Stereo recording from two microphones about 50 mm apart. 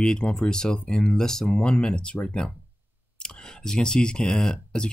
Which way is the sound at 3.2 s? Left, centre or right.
Centre.